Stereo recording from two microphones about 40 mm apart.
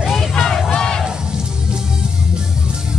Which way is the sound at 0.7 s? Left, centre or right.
Centre.